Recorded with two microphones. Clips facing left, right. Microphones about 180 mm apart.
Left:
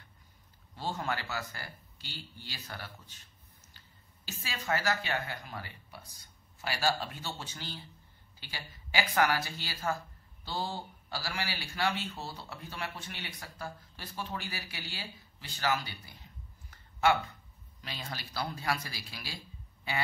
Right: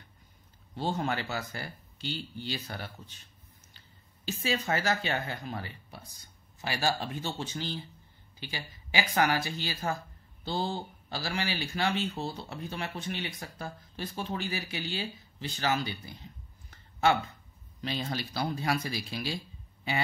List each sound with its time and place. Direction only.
0.7 s speech: 25° right (ahead or behind)
4.3 s a woman's voice: 25° right (ahead or behind)
17.8 s speech: 25° right (ahead or behind)